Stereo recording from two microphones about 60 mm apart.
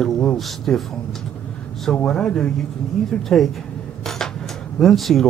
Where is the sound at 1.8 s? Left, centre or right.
Centre.